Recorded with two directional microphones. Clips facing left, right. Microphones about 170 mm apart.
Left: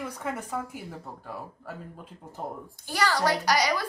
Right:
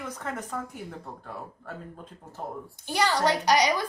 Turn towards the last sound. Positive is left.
turn(degrees=-20)  # may be behind; listen again after turning